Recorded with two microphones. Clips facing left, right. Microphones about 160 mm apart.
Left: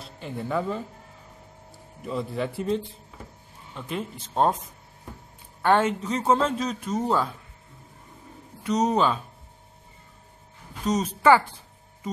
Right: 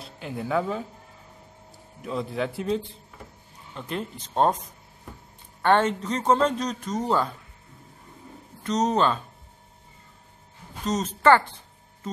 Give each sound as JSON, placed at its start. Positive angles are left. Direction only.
{"t": 0.0, "sound": "speech", "side_deg": -5}
{"t": 2.0, "sound": "a man's voice", "side_deg": 0}
{"t": 5.6, "sound": "a man's voice", "side_deg": 5}
{"t": 8.6, "sound": "a man's voice", "side_deg": 10}
{"t": 10.9, "sound": "a man's voice", "side_deg": 10}